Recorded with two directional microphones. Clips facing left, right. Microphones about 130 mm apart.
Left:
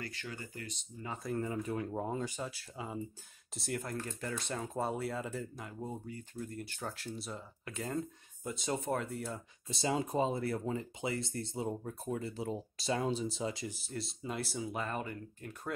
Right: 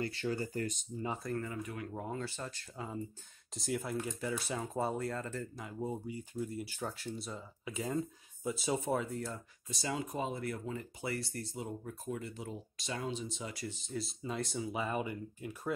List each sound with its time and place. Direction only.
0.0 s speech: 30° right (ahead or behind)
1.4 s speech: 30° left (ahead or behind); by 5.5 s 10° left (ahead or behind)
5.6 s speech: 5° right (ahead or behind)
9.7 s speech: 25° left (ahead or behind)
11.0 s speech: 20° left (ahead or behind)
13.7 s speech: 5° left (ahead or behind); by 15.7 s 10° right (ahead or behind)